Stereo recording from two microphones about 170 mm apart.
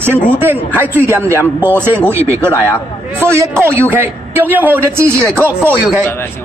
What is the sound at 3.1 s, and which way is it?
A man's voice, 15° right (ahead or behind).